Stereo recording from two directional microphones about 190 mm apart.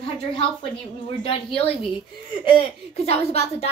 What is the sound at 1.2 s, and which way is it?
Speech, 30° left (ahead or behind).